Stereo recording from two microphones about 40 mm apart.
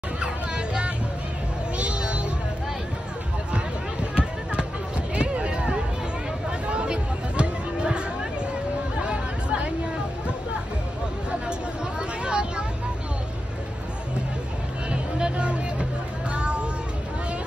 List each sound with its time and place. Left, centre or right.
0.2 s hubbub: right
1.8 s music: right
4.1 s a sound: right
6.7 s music: right
9.0 s hubbub: right
12.0 s vehicle: right
14.9 s a sound: right